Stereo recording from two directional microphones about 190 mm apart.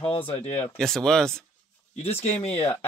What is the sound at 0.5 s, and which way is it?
Speech, 5° left (ahead or behind).